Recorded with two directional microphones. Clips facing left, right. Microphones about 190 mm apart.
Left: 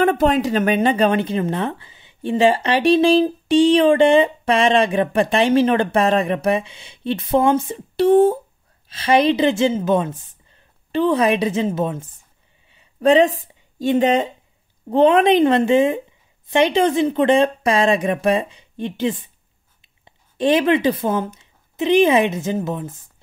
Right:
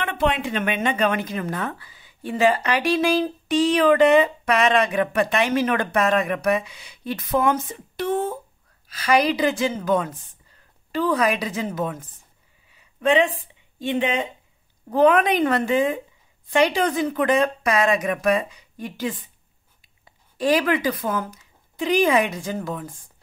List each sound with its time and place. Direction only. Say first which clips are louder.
0.0 s a woman's voice: left 7 dB; 40° left (ahead or behind); by 12.2 s 25° left (ahead or behind)
12.6 s a sound: left 5 dB; 30° left (ahead or behind)
14.9 s speech: left 4 dB; 25° left (ahead or behind)